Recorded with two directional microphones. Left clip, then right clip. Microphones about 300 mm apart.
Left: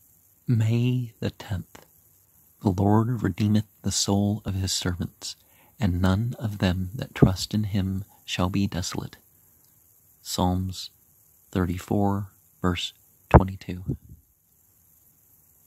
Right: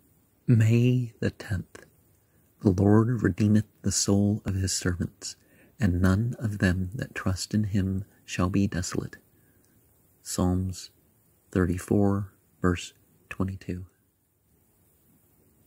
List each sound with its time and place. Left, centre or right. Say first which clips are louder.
0.5 s speech: right 3 dB; centre
10.2 s speech: left 3 dB; centre